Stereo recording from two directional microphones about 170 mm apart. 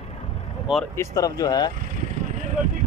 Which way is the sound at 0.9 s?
20° left (ahead or behind).